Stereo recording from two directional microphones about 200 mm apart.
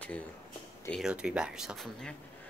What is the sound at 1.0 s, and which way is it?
Speech, 5° right (ahead or behind).